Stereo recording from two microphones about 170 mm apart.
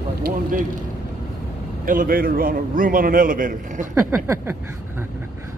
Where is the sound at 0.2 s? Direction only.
55° right (ahead or behind).